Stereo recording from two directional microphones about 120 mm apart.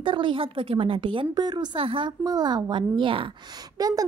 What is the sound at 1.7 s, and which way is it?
Speech, 50° right (ahead or behind).